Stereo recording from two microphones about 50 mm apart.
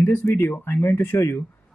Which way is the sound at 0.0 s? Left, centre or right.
Left.